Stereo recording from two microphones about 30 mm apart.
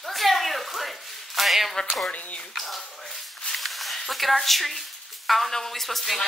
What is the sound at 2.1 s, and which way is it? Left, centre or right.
Speech, left.